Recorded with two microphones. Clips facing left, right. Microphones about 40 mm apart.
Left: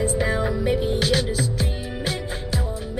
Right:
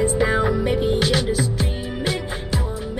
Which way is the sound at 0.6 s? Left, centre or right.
Centre.